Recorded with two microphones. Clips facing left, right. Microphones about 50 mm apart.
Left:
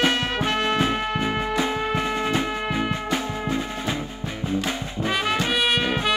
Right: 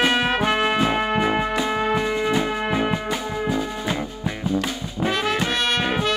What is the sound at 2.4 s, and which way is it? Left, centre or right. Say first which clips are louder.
Music: right 3 dB; right.